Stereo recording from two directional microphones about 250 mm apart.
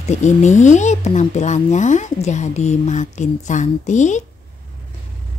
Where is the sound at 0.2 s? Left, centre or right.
Left.